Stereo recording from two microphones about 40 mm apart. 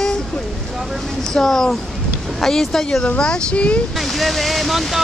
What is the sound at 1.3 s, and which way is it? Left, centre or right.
Speech, centre.